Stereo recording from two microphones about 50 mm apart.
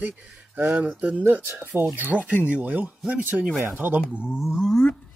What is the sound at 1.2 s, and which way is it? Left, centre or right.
Speech, right.